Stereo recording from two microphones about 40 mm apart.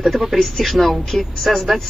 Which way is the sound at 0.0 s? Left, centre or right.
Centre.